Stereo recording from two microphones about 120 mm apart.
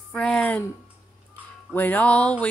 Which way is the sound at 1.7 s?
15° left (ahead or behind).